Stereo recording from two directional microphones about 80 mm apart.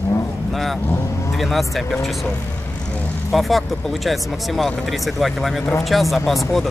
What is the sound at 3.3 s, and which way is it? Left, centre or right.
Speech, centre.